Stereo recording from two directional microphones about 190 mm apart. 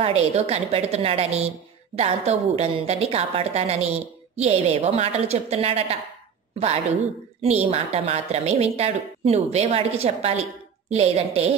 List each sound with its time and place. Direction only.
0.0 s a woman's voice: 35° right (ahead or behind)
7.7 s a woman's voice: 35° right (ahead or behind)